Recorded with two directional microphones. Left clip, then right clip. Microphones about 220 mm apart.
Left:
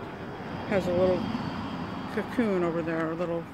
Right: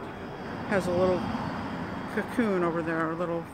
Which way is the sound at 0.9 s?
30° right (ahead or behind).